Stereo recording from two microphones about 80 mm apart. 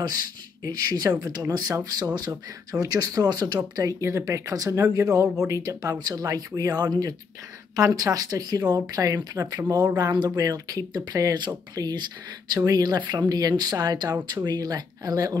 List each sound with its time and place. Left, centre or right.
0.7 s speech: right
5.9 s speech: right
7.7 s speech: right
11.3 s speech: right